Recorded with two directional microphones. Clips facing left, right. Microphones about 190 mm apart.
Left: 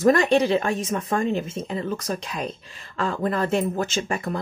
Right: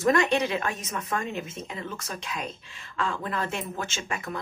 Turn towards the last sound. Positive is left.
turn(degrees=35)  # may be behind; listen again after turning